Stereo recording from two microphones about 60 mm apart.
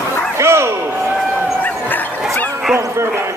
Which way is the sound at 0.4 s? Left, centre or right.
Right.